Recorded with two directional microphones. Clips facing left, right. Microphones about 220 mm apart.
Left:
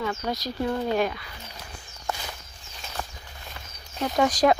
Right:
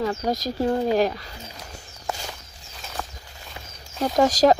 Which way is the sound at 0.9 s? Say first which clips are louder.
Right 4 dB; 35° right (ahead or behind).